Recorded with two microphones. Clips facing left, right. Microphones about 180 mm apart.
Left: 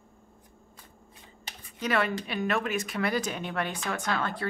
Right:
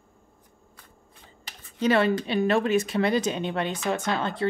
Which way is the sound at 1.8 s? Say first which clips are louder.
Right 6 dB; 30° right (ahead or behind).